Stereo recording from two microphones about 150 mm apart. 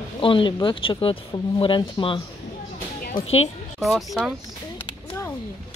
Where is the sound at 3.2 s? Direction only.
40° left (ahead or behind).